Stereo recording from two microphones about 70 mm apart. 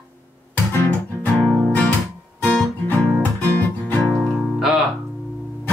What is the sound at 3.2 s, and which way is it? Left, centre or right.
Music, left.